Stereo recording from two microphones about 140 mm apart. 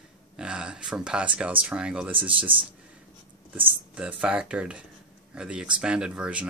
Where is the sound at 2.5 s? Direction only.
40° right (ahead or behind).